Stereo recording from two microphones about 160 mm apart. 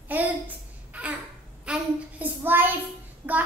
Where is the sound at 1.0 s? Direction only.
10° right (ahead or behind).